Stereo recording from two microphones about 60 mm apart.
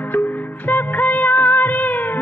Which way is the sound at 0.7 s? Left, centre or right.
Left.